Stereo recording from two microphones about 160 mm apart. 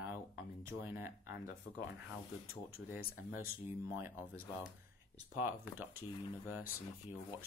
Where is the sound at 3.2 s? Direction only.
15° right (ahead or behind).